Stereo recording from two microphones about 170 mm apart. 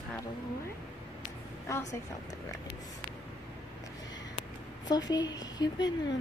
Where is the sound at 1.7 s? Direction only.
20° left (ahead or behind).